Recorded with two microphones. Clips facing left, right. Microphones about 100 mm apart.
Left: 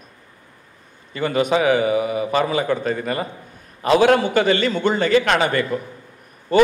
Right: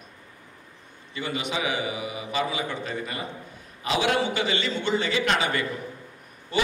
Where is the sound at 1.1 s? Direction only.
50° left (ahead or behind).